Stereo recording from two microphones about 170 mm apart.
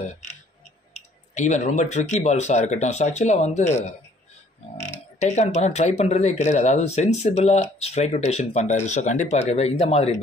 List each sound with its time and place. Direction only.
1.3 s speech: 45° left (ahead or behind)
5.2 s speech: 40° left (ahead or behind)